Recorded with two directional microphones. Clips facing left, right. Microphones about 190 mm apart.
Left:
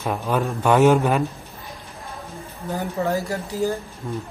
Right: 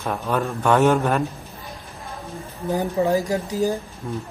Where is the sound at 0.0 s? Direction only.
10° left (ahead or behind).